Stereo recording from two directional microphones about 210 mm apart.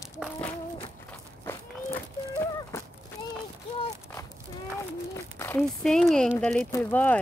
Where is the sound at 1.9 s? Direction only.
10° left (ahead or behind).